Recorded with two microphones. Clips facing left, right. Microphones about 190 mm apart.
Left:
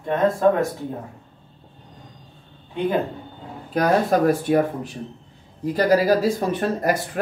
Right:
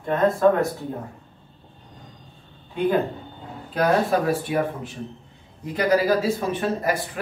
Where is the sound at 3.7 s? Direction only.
40° left (ahead or behind).